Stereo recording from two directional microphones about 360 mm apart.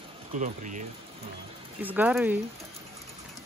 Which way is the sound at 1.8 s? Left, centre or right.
Centre.